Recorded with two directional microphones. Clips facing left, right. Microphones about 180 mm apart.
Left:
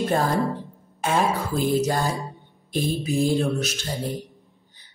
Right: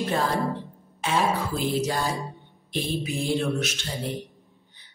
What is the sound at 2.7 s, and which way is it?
Speech, 40° left (ahead or behind).